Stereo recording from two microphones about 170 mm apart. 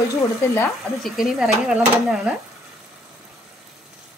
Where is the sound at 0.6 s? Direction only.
Centre (ahead or behind).